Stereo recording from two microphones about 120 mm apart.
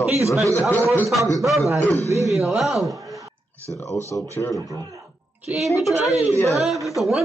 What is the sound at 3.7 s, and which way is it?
Speech, 25° left (ahead or behind).